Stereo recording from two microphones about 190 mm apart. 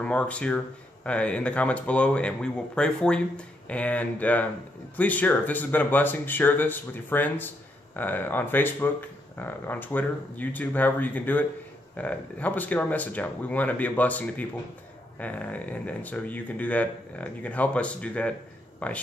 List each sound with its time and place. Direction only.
0.0 s speech: 5° left (ahead or behind)